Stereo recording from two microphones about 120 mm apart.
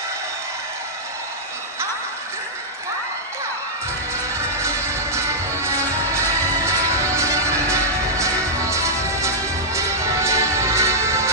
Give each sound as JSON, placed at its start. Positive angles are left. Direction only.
{"t": 4.1, "sound": "music", "side_deg": -25}